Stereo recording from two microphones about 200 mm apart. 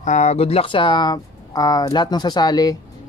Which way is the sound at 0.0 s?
35° left (ahead or behind).